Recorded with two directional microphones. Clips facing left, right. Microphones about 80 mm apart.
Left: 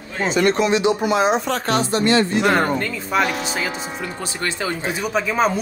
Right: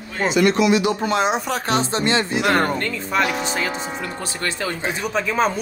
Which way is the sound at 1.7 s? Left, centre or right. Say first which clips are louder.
Left 3 dB; right.